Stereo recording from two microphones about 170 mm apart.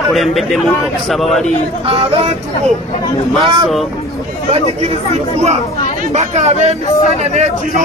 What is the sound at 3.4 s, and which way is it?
Speech, 25° right (ahead or behind).